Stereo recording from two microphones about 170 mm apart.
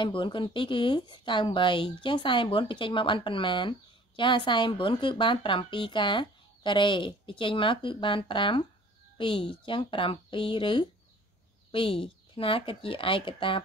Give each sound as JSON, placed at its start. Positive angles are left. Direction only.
{"t": 0.0, "sound": "a woman's voice", "side_deg": 30}